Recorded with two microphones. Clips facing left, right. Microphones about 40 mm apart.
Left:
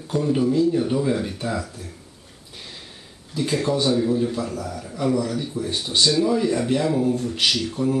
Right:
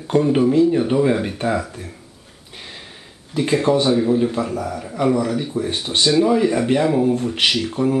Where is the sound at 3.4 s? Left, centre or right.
Right.